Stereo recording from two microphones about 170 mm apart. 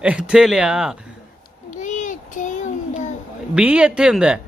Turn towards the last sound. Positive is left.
turn(degrees=-5)  # may be behind; listen again after turning